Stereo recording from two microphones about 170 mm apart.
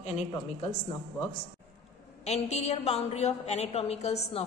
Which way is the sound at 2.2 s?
40° left (ahead or behind).